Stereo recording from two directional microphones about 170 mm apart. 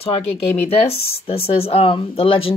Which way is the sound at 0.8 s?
35° left (ahead or behind).